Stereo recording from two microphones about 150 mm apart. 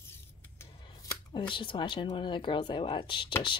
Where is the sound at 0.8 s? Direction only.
25° left (ahead or behind).